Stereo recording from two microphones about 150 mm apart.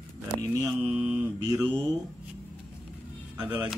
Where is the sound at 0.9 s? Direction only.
15° right (ahead or behind).